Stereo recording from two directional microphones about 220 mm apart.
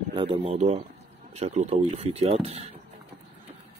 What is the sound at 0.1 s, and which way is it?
Speech, 25° right (ahead or behind).